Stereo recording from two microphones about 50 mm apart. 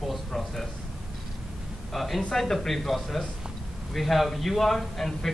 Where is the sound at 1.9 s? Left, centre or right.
Centre.